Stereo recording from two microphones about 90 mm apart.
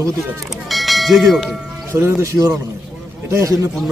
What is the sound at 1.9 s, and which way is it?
Speech, 35° right (ahead or behind).